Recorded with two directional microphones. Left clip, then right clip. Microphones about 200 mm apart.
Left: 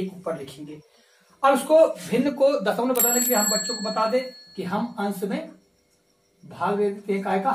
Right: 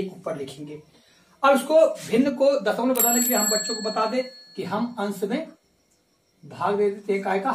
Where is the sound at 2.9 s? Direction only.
Centre (ahead or behind).